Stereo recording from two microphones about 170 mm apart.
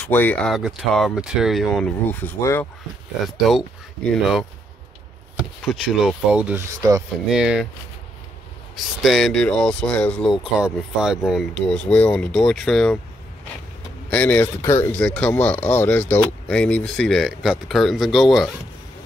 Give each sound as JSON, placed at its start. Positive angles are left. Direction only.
{"t": 0.1, "sound": "speech", "side_deg": 10}
{"t": 2.4, "sound": "speech", "side_deg": 15}
{"t": 3.3, "sound": "speech", "side_deg": 0}
{"t": 5.8, "sound": "speech", "side_deg": 0}
{"t": 8.7, "sound": "speech", "side_deg": 0}
{"t": 10.4, "sound": "speech", "side_deg": -5}
{"t": 14.1, "sound": "speech", "side_deg": 10}